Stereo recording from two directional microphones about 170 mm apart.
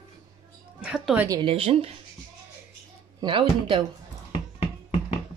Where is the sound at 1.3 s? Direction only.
30° right (ahead or behind).